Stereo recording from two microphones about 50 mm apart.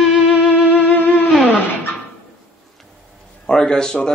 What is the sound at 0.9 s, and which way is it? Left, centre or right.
Music, left.